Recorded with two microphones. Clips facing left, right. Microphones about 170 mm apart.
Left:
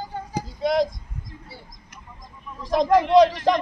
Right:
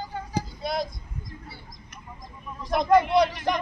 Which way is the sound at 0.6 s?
90° left.